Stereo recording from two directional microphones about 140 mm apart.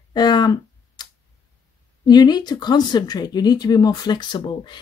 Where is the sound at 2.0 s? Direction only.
30° left (ahead or behind).